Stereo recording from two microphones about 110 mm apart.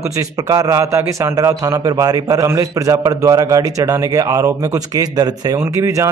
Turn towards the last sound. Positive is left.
turn(degrees=-30)  # may be behind; listen again after turning